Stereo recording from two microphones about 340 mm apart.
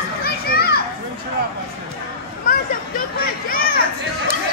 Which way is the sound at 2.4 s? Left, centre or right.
Left.